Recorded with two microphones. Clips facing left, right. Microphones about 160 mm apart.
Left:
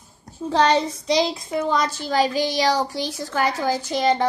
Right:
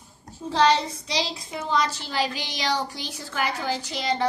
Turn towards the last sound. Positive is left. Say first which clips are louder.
# left 6 dB
turn(degrees=50)  # may be behind; listen again after turning